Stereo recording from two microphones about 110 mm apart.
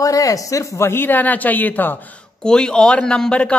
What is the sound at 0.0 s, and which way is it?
Speech, 30° left (ahead or behind).